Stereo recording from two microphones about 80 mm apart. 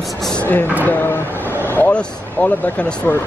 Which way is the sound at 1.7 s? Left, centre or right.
Left.